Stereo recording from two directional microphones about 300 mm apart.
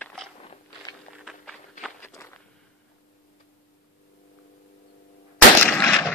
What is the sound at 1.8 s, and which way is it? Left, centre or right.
Walk, centre.